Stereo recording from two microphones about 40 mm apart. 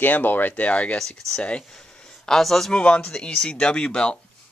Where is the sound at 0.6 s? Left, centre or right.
Left.